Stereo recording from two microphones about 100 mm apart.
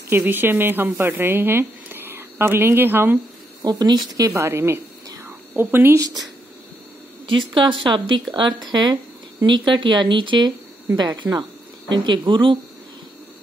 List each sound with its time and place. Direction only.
0.1 s a woman's voice: 20° right (ahead or behind)
3.6 s speech: 45° right (ahead or behind)
4.3 s a sound: 25° right (ahead or behind)
5.9 s speech: 40° right (ahead or behind)
7.2 s speech: 55° right (ahead or behind)